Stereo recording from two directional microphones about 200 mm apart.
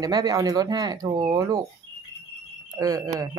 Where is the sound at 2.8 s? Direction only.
15° right (ahead or behind).